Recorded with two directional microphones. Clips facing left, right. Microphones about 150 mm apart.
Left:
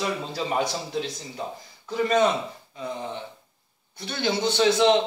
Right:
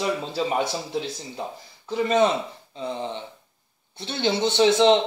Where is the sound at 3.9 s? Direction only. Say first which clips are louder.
Right 2 dB; 25° right (ahead or behind).